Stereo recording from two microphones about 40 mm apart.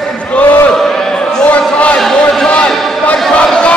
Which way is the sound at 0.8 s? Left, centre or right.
Centre.